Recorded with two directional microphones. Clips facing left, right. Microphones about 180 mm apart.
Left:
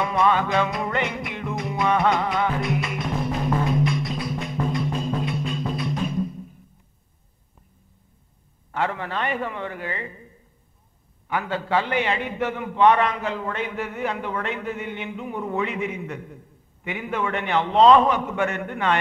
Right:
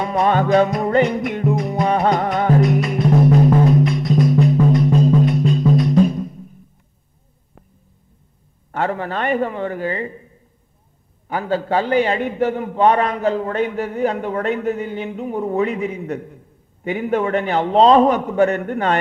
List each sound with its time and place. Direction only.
0.0 s music: 40° right (ahead or behind)
8.7 s a man's voice: 40° right (ahead or behind)
11.2 s a man's voice: 40° right (ahead or behind)